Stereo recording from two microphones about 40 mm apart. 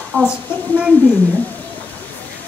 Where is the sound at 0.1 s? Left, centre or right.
Left.